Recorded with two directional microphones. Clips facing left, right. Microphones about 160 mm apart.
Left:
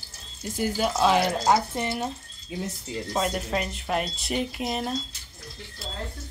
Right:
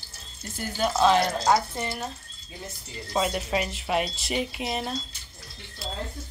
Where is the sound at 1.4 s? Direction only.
20° left (ahead or behind).